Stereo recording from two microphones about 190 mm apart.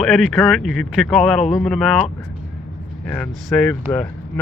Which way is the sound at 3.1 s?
5° left (ahead or behind).